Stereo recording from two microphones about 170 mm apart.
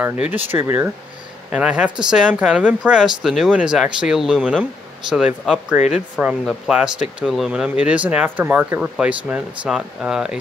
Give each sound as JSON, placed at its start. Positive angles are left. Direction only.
{"t": 0.0, "sound": "speech", "side_deg": -10}